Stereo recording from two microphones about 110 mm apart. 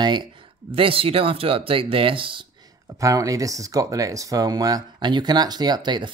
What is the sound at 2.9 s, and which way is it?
Speech, 30° right (ahead or behind).